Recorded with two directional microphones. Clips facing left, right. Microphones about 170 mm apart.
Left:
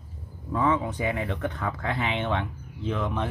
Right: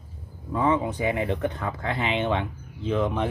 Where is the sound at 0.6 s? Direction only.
20° right (ahead or behind).